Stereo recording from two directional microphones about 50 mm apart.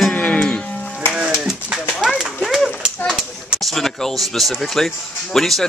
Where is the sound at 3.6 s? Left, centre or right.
Centre.